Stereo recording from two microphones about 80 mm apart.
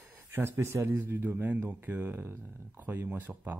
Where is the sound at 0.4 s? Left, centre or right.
Right.